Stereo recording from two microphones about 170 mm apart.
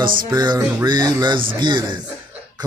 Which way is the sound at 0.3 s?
25° right (ahead or behind).